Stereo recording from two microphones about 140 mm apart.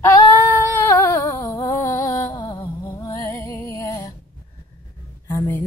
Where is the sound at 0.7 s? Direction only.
20° left (ahead or behind).